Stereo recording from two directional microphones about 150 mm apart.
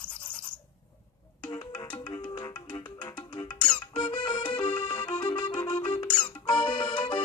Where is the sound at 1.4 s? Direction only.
30° left (ahead or behind).